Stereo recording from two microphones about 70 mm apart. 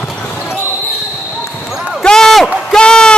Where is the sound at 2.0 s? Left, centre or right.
Centre.